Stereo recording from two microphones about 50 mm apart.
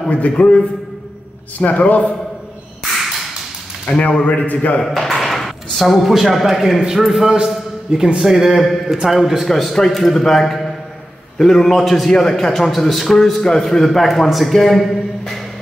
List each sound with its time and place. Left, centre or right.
0.1 s speech: left
1.6 s speech: left
4.0 s speech: left
4.8 s a sound: centre
5.8 s a man's voice: centre
7.2 s a man's voice: centre
9.5 s a man's voice: centre